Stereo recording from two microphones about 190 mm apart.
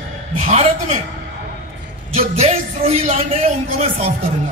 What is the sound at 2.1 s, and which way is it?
A man's voice, 30° right (ahead or behind).